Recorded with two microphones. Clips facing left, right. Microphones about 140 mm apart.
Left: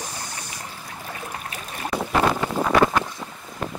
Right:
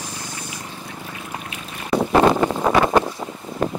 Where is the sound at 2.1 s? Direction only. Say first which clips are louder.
Right 6 dB; 35° right (ahead or behind).